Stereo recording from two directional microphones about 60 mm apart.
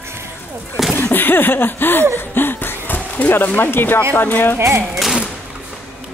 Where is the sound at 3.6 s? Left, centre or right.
Left.